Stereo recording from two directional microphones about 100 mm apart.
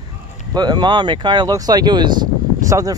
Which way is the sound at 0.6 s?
45° right (ahead or behind).